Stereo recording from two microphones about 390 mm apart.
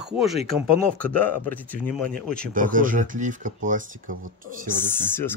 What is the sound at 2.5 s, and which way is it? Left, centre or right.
Speech, centre.